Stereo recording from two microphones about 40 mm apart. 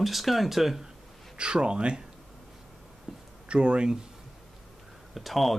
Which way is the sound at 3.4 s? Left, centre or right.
Right.